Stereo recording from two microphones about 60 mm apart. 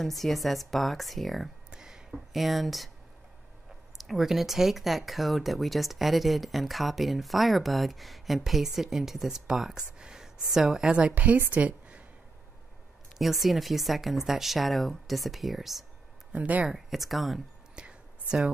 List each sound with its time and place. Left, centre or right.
0.0 s speech: centre
1.7 s a sound: centre
4.0 s a woman's voice: centre; by 12.0 s right
13.2 s speech: centre
16.3 s speech: right
16.6 s speech: centre
17.7 s whispering: centre